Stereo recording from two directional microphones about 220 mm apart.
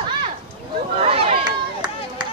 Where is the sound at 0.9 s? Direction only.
25° right (ahead or behind).